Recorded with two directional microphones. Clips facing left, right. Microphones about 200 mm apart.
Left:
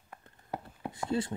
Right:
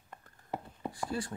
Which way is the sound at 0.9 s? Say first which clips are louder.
Left 5 dB; 25° left (ahead or behind).